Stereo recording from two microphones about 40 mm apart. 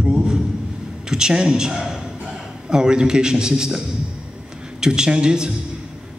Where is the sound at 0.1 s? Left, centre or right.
Centre.